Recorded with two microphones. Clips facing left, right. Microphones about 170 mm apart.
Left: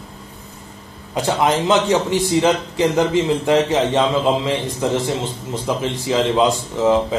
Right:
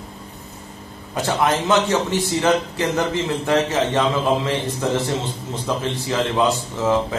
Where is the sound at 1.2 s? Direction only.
15° left (ahead or behind).